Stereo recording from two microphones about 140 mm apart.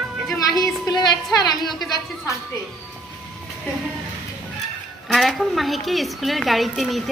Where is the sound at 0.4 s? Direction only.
30° left (ahead or behind).